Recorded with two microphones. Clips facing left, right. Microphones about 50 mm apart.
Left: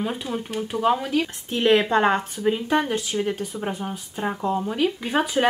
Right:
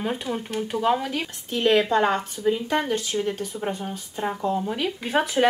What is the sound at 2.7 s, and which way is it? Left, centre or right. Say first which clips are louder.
Speech: left 2 dB; centre.